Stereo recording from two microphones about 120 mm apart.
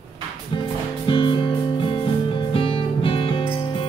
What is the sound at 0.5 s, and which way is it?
Music, 45° left (ahead or behind).